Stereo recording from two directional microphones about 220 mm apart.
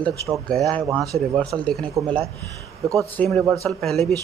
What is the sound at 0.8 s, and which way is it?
Speech, 15° right (ahead or behind).